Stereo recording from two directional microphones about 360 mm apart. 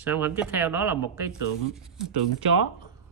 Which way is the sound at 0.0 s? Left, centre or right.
Centre.